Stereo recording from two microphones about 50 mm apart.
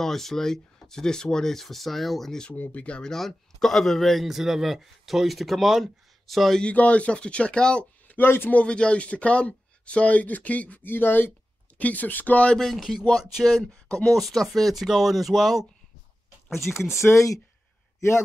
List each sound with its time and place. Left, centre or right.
0.0 s speech: centre
2.5 s speech: left
3.0 s a man's voice: centre
6.6 s speech: left
8.1 s a sound: left
8.6 s speech: centre
10.9 s speech: left
11.8 s speech: left
12.5 s a man's voice: centre
16.9 s speech: left